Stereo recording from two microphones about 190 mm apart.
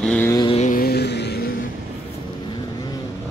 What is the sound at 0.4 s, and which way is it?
Vehicle, 30° left (ahead or behind).